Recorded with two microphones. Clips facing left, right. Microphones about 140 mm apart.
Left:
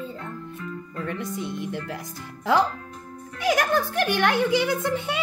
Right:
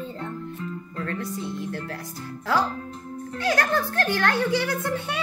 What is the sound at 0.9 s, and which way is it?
A child's voice, 20° left (ahead or behind).